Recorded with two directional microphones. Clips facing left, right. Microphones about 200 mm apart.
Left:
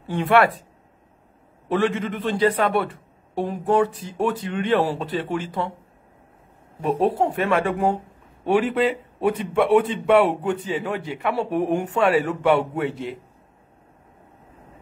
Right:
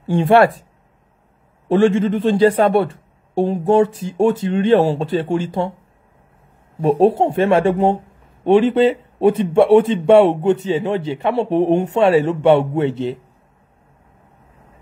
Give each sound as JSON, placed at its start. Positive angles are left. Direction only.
{"t": 0.0, "sound": "a man's voice", "side_deg": -30}
{"t": 1.7, "sound": "a man's voice", "side_deg": -30}
{"t": 6.8, "sound": "a man's voice", "side_deg": -30}